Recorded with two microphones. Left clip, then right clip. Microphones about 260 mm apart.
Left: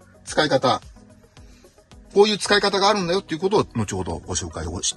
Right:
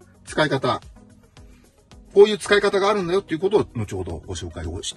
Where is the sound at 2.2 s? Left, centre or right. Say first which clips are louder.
Right 2 dB; left.